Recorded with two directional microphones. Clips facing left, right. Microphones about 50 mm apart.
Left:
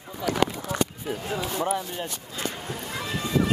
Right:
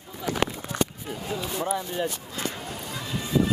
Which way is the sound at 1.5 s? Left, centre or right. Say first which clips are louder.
Left 2 dB; centre.